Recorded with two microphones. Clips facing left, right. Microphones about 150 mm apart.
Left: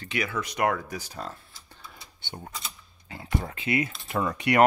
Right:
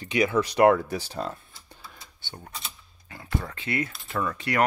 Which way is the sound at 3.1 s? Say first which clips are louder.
Left 1 dB; 20° left (ahead or behind).